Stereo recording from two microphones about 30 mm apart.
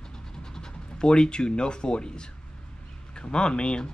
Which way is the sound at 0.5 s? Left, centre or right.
Left.